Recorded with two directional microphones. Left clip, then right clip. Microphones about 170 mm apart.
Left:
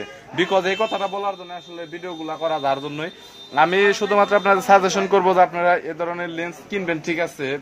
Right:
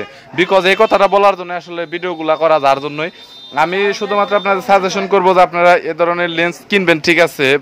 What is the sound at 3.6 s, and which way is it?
A man's voice, 5° right (ahead or behind).